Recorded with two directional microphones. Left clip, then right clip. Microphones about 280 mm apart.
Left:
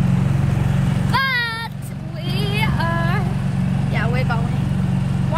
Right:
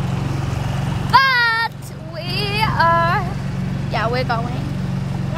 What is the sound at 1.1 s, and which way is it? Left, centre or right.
Vehicle, centre.